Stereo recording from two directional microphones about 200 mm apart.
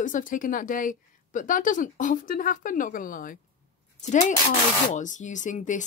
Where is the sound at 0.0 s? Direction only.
40° left (ahead or behind).